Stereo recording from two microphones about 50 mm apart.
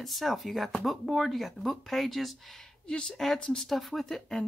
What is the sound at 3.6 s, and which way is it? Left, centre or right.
Speech, centre.